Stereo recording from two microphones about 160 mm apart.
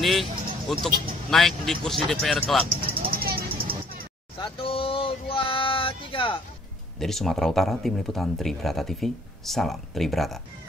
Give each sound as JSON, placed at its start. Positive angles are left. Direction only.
{"t": 0.0, "sound": "speech", "side_deg": 0}
{"t": 3.1, "sound": "vehicle", "side_deg": -70}
{"t": 4.4, "sound": "a sound", "side_deg": 35}
{"t": 7.0, "sound": "speech", "side_deg": 0}